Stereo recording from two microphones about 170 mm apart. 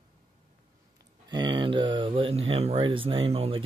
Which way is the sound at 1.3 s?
25° right (ahead or behind).